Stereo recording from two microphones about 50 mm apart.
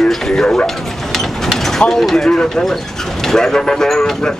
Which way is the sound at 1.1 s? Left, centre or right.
Centre.